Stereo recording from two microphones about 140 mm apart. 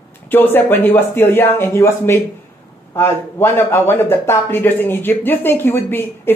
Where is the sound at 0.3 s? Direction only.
15° left (ahead or behind).